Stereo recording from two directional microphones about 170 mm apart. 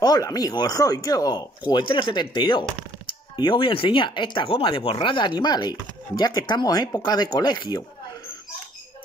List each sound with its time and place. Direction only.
0.0 s speech: 20° left (ahead or behind)